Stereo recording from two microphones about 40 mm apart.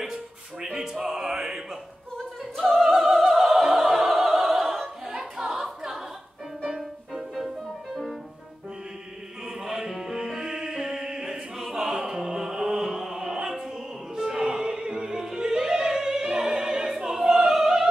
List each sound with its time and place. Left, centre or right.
0.0 s music: centre
2.5 s opera: centre
5.5 s choir: centre
6.7 s music: centre
9.7 s music: centre
14.1 s opera: centre